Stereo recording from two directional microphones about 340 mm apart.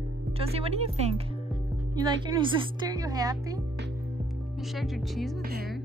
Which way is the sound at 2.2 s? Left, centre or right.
Centre.